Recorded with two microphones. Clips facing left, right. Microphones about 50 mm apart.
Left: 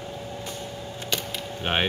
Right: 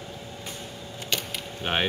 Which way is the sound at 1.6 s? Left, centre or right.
Centre.